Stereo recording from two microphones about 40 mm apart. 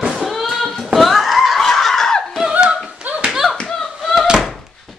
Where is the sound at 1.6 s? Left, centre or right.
Centre.